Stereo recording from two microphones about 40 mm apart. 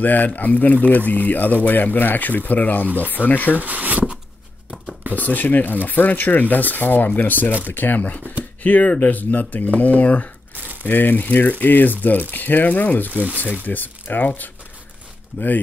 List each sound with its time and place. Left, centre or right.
0.0 s speech: left
3.5 s speech: right
5.1 s speech: left
10.5 s crumpling: right
10.9 s speech: left
13.7 s speech: left